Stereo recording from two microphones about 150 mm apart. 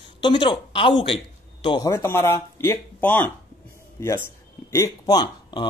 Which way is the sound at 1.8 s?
15° left (ahead or behind).